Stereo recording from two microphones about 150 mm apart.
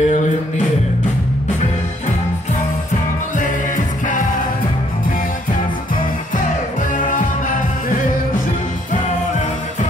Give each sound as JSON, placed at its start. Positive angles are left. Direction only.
{"t": 0.0, "sound": "a sound", "side_deg": 50}
{"t": 3.3, "sound": "music", "side_deg": 60}
{"t": 7.1, "sound": "music", "side_deg": 60}